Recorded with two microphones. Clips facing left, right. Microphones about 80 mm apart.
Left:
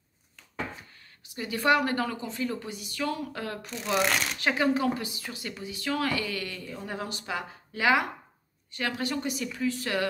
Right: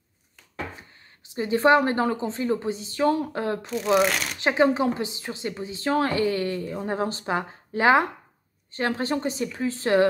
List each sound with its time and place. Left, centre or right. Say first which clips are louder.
1.2 s a woman's voice: right 7 dB; right
3.7 s speech: right 5 dB; centre
4.4 s a woman's voice: right 7 dB; right